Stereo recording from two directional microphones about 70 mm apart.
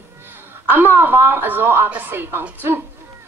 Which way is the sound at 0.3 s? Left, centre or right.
Right.